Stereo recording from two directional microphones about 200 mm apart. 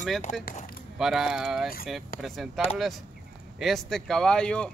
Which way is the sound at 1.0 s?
Centre (ahead or behind).